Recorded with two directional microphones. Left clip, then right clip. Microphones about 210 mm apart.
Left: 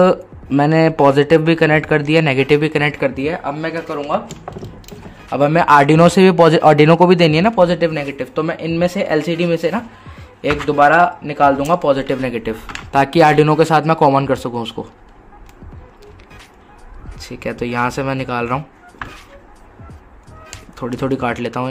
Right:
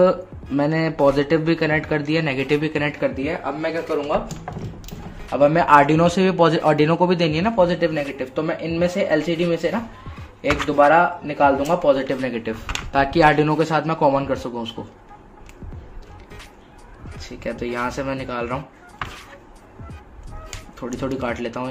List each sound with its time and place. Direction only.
0.0 s speech: 50° left (ahead or behind)
5.4 s speech: 50° left (ahead or behind)
12.3 s speech: 35° left (ahead or behind); by 14.8 s 55° left (ahead or behind)
17.2 s speech: 50° left (ahead or behind)
20.8 s speech: 50° left (ahead or behind)